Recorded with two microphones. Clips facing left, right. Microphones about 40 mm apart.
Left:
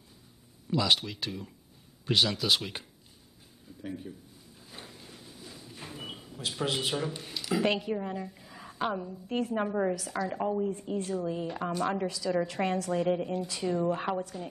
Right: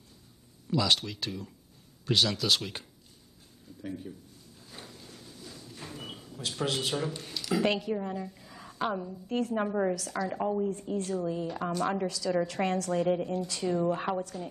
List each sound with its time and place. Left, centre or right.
0.7 s a woman's voice: centre
4.6 s a sound: centre
9.6 s a woman's voice: centre
10.7 s a woman's voice: centre
14.2 s a woman's voice: centre